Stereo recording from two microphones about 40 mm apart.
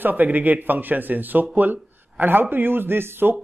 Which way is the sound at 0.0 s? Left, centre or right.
Right.